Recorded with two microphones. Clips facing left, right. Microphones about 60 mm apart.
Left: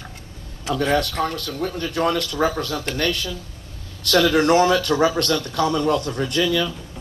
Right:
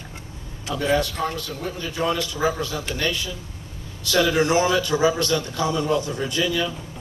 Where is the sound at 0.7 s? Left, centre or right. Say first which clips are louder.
Left 1 dB; left.